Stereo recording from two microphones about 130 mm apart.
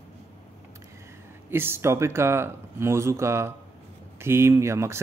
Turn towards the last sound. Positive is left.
turn(degrees=-20)  # may be behind; listen again after turning